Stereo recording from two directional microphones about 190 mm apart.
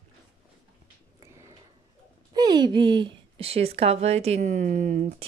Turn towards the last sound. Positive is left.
turn(degrees=-40)  # may be behind; listen again after turning